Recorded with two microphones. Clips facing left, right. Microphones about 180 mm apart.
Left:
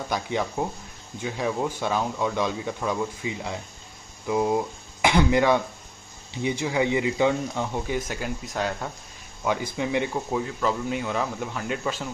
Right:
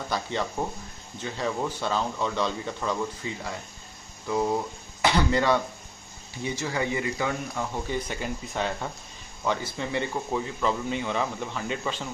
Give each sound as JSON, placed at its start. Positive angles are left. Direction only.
{"t": 0.1, "sound": "speech", "side_deg": 10}
{"t": 6.6, "sound": "speech", "side_deg": 15}
{"t": 8.1, "sound": "speech", "side_deg": 0}
{"t": 9.4, "sound": "speech", "side_deg": 15}